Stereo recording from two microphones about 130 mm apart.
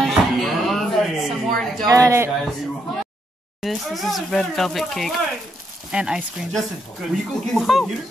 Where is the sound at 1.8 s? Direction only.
25° right (ahead or behind).